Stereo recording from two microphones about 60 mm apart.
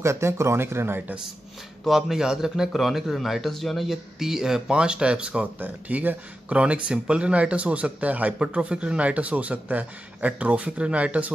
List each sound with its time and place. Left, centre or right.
0.0 s speech: right
1.9 s a man's voice: centre
5.6 s a man's voice: right